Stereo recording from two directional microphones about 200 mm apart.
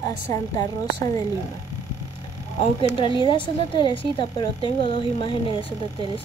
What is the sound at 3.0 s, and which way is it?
A woman's voice, 25° left (ahead or behind).